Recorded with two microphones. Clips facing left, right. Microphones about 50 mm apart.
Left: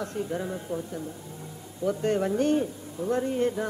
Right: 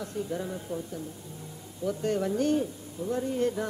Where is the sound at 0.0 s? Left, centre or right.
Left.